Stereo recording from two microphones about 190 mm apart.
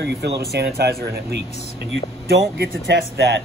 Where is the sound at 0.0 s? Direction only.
60° right (ahead or behind).